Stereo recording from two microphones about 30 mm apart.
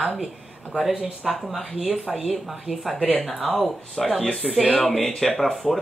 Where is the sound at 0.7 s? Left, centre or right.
Right.